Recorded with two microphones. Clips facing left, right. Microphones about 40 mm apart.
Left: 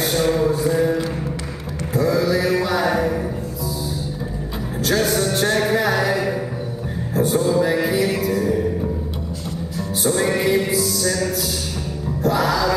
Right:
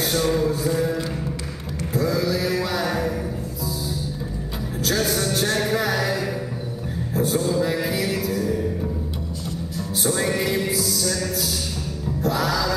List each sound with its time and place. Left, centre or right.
0.0 s music: centre
2.0 s mantra: centre
4.8 s music: centre
9.8 s music: centre